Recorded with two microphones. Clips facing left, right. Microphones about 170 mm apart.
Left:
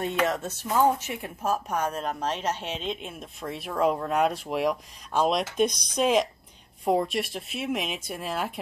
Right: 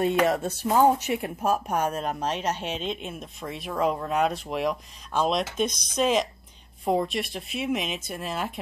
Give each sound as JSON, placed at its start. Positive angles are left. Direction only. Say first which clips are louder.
{"t": 0.4, "sound": "speech", "louder": "right 3 dB", "side_deg": -35}
{"t": 0.9, "sound": "a woman's voice", "louder": "right 6 dB", "side_deg": -15}